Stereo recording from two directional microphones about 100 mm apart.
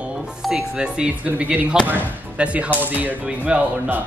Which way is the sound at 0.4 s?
5° right (ahead or behind).